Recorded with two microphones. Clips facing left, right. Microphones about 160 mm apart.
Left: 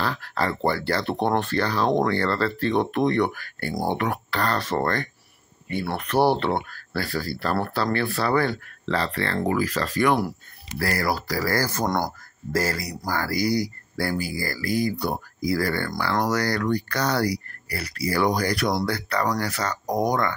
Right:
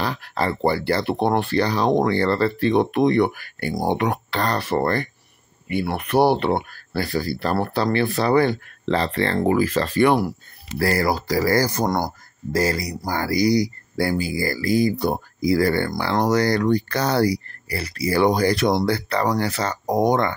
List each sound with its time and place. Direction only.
0.0 s speech: 15° right (ahead or behind)
4.6 s speech: 10° right (ahead or behind); by 20.3 s 25° right (ahead or behind)